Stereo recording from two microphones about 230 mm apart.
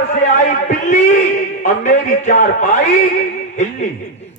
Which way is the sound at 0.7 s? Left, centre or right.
Left.